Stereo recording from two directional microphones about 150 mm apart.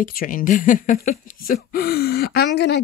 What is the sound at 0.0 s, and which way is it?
Speech, 70° left (ahead or behind).